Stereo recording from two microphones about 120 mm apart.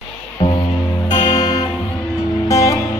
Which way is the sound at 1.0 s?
35° left (ahead or behind).